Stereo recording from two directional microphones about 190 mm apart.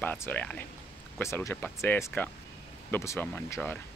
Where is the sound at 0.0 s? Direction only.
10° left (ahead or behind).